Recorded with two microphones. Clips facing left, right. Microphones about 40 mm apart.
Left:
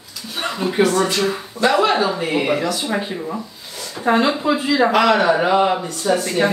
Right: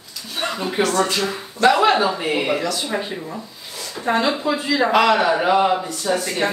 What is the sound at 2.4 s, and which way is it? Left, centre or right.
A man's voice, centre.